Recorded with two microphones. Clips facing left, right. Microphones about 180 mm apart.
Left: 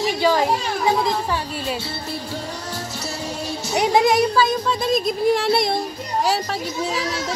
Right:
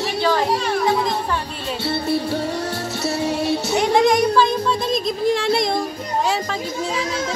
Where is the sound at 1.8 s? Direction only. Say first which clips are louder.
Right 9 dB; 65° right (ahead or behind).